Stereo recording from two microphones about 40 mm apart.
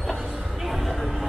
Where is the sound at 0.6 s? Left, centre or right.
Centre.